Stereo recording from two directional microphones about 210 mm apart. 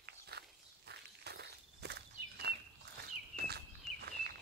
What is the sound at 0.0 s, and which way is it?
Walk, 50° right (ahead or behind).